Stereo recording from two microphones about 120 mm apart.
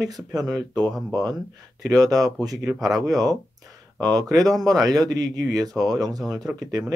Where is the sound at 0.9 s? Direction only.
Centre (ahead or behind).